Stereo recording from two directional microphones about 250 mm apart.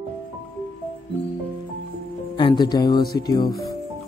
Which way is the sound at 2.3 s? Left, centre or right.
Centre.